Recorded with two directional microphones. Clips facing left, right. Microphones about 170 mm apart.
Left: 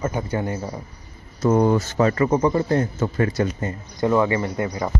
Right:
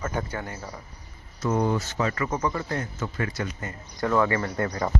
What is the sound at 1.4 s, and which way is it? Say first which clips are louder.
Speech: left 7 dB; 45° left (ahead or behind).